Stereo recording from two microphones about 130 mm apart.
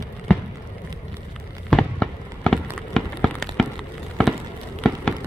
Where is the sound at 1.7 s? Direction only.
5° left (ahead or behind).